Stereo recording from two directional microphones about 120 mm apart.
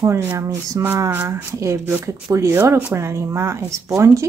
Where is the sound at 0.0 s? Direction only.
20° right (ahead or behind).